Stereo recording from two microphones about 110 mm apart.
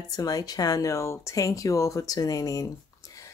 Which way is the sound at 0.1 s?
35° left (ahead or behind).